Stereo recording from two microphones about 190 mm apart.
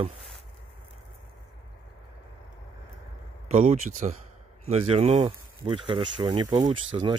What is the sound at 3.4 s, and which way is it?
Speech, 35° right (ahead or behind).